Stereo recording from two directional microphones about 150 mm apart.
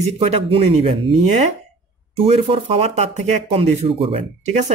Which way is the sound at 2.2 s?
40° right (ahead or behind).